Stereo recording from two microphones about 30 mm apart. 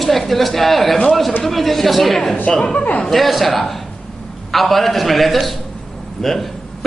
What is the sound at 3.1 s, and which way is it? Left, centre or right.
A man's voice, centre.